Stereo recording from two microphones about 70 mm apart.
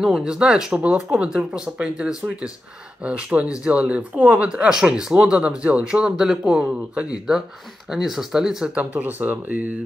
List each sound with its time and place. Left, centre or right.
0.0 s speech: centre
4.5 s speech: centre
8.7 s speech: right